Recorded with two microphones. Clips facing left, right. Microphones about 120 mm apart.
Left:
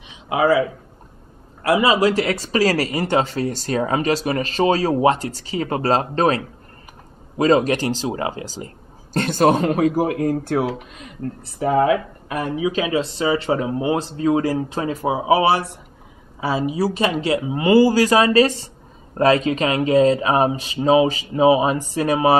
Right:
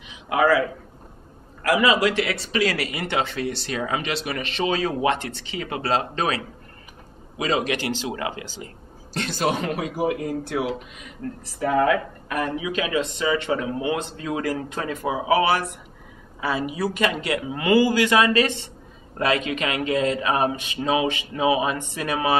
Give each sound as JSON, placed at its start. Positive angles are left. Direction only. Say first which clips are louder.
{"t": 0.3, "sound": "a man's voice", "louder": "left 2 dB", "side_deg": 25}